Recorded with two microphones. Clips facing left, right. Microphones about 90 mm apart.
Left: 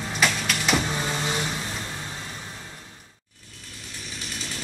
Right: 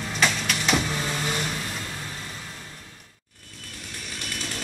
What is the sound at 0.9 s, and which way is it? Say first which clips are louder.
Vehicle: left 1 dB; 15° left (ahead or behind).